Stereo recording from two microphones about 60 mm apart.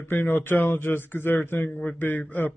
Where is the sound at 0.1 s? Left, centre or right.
Left.